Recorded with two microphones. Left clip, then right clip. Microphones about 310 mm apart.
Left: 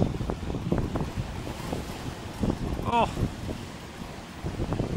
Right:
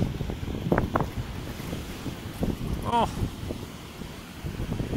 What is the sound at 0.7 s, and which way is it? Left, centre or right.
Wind, right.